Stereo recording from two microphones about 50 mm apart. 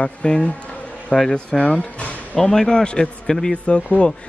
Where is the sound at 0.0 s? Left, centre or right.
Left.